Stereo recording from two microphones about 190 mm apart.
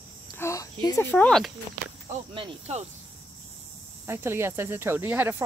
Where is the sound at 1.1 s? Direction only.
5° left (ahead or behind).